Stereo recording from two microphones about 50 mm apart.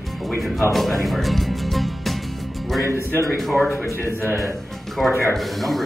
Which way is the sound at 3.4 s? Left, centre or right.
Centre.